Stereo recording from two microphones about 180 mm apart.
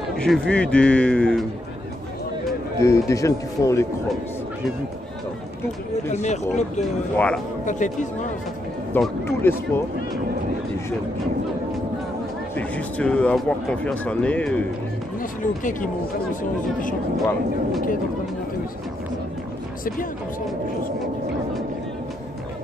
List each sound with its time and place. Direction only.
0.1 s a man's voice: 5° left (ahead or behind)
2.8 s speech: 15° left (ahead or behind)
6.0 s speech: 40° left (ahead or behind)
6.8 s a man's voice: 5° left (ahead or behind)
7.6 s speech: 45° left (ahead or behind)
8.9 s speech: 10° left (ahead or behind)
12.5 s speech: 10° left (ahead or behind)
15.4 s speech: 45° left (ahead or behind)